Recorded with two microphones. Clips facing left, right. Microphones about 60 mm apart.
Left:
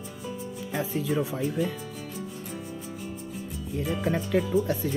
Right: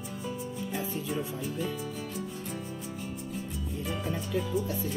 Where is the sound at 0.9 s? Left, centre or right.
Left.